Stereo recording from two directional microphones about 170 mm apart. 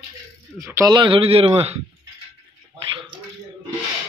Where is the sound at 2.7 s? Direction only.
30° right (ahead or behind).